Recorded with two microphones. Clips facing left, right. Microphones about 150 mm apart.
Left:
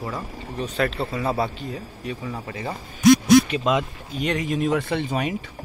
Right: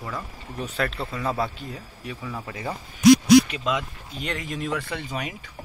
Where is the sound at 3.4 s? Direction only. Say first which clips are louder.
Left 5 dB; 25° left (ahead or behind).